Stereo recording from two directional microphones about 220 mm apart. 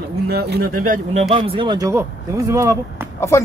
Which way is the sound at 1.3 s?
20° right (ahead or behind).